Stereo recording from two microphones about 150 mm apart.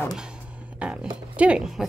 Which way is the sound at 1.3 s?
5° right (ahead or behind).